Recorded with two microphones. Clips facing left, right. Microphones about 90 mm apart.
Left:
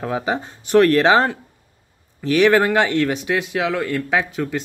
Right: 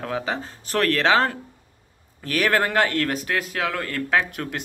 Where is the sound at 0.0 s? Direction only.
20° left (ahead or behind).